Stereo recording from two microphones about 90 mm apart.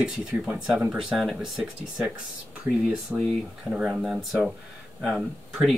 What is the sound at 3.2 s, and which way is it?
Speech, 5° left (ahead or behind).